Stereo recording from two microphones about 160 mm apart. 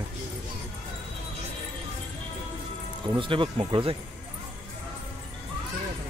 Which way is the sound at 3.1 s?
30° right (ahead or behind).